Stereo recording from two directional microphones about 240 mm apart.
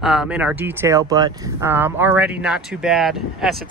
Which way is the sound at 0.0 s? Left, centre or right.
Centre.